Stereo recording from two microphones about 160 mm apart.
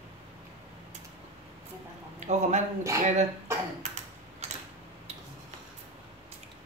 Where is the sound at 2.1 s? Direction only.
45° right (ahead or behind).